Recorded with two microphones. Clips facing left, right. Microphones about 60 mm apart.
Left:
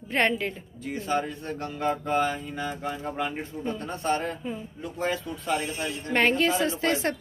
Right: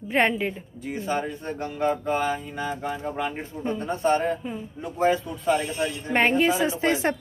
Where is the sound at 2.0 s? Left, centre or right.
Centre.